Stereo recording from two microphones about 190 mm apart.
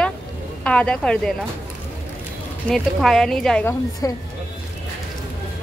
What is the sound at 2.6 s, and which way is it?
Speech, centre (ahead or behind).